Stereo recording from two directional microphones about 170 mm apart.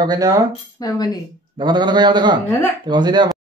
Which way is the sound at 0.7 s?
25° left (ahead or behind).